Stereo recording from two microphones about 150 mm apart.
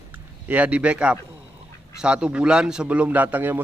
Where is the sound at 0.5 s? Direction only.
10° right (ahead or behind).